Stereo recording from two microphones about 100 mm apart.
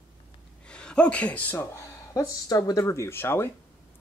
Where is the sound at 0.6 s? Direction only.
10° left (ahead or behind).